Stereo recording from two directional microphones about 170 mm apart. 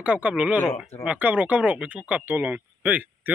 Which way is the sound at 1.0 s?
10° right (ahead or behind).